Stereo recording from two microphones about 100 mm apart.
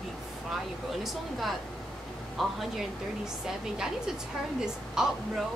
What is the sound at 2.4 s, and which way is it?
Speech, centre (ahead or behind).